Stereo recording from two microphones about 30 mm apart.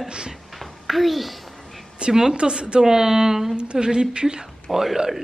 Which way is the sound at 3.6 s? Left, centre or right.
Right.